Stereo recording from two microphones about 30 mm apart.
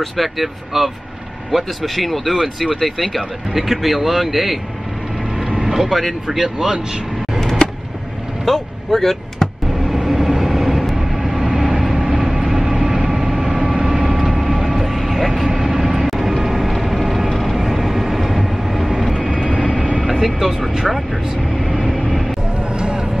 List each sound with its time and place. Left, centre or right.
0.0 s speech: centre
5.4 s vehicle: centre
5.9 s speech: centre
8.5 s vehicle: centre
9.8 s vehicle: centre
11.2 s vehicle: centre
11.7 s train: centre
13.0 s vehicle: right; by 19.1 s centre
19.5 s vehicle: left
20.0 s vehicle: centre
22.7 s a sound: right